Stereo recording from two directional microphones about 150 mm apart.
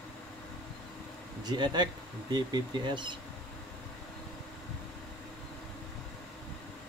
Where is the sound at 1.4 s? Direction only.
30° right (ahead or behind).